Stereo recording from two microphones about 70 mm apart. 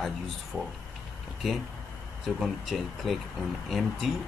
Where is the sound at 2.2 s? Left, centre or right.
Centre.